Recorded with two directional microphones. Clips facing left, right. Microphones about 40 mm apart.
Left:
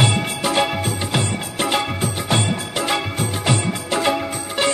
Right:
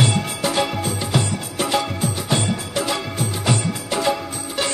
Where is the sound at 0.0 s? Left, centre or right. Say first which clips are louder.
Left 1 dB; left.